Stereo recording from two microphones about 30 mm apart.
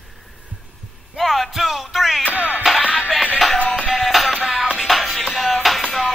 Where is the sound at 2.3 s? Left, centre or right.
Right.